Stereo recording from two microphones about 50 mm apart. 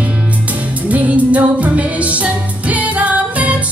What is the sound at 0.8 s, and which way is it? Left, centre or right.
Music, right.